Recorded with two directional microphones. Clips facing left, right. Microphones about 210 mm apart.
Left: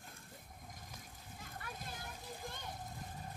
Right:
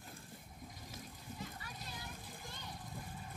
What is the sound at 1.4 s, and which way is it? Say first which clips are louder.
Children playing: left 2 dB; 50° left (ahead or behind).